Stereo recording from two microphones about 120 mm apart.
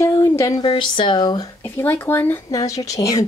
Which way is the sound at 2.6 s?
30° left (ahead or behind).